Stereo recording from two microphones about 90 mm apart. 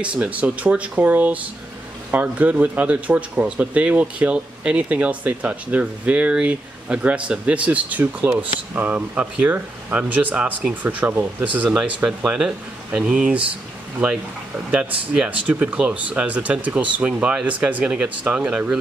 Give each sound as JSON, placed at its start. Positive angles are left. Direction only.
{"t": 0.0, "sound": "speech", "side_deg": -15}
{"t": 14.7, "sound": "speech", "side_deg": -15}